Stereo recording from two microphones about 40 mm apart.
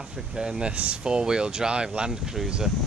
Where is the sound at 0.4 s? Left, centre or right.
Centre.